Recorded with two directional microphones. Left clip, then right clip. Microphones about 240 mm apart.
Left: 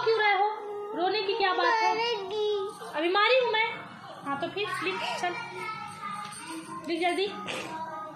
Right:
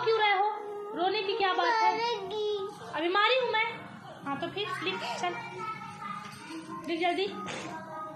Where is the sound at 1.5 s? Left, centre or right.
Centre.